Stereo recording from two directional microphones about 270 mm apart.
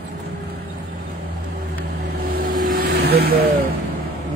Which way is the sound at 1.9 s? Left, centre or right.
Right.